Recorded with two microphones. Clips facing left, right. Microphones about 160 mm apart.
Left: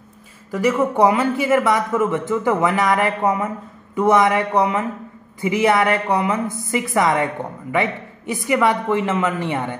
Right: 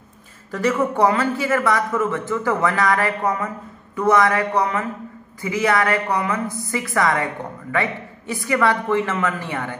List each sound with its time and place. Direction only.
0.5 s a man's voice: 15° left (ahead or behind)